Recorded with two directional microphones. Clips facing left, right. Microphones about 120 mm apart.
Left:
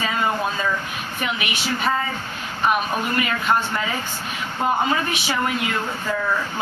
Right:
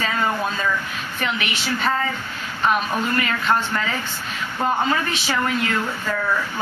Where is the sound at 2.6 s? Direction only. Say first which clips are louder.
Even; 15° left (ahead or behind).